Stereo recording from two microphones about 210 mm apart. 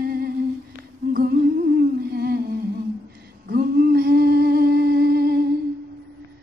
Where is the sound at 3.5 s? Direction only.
50° right (ahead or behind).